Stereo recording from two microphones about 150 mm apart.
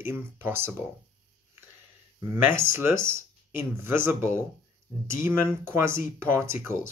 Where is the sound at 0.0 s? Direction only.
15° right (ahead or behind).